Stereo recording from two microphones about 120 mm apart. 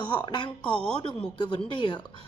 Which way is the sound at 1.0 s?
45° left (ahead or behind).